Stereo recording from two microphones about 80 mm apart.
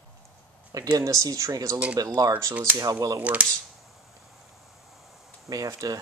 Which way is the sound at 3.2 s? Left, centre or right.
Centre.